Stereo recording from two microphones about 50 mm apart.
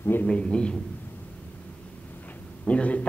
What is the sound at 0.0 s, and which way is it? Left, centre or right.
Speech, left.